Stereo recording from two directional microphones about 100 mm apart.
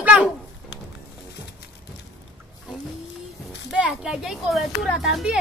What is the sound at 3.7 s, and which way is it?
Speech, 5° right (ahead or behind).